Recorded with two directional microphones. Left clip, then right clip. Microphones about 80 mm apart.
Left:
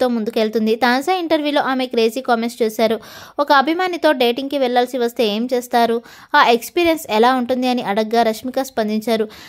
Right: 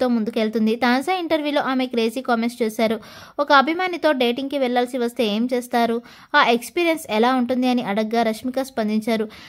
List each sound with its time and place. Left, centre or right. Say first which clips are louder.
0.2 s a woman's voice: left 4 dB; left